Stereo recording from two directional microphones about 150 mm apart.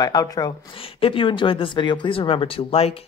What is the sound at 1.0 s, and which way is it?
Speech, 35° left (ahead or behind).